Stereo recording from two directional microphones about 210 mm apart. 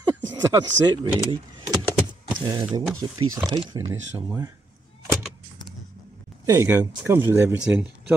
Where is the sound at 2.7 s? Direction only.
20° right (ahead or behind).